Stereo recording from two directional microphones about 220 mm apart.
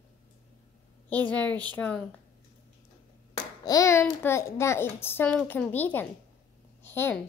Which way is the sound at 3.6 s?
15° left (ahead or behind).